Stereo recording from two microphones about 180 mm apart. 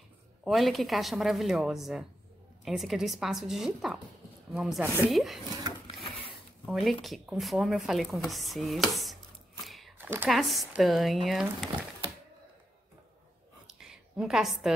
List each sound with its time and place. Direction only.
0.4 s speech: centre (ahead or behind)
5.9 s sewing machine: 30° left (ahead or behind)
6.6 s speech: centre (ahead or behind)
9.7 s a sound: centre (ahead or behind)
9.9 s speech: 10° right (ahead or behind)
10.3 s speech: centre (ahead or behind)
13.7 s a sound: 5° right (ahead or behind)